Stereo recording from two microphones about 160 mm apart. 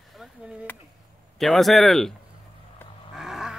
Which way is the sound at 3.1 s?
5° right (ahead or behind).